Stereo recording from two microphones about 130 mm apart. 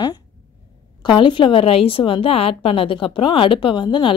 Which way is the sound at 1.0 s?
40° left (ahead or behind).